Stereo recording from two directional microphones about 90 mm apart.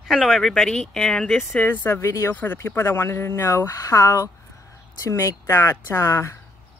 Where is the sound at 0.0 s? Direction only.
Centre (ahead or behind).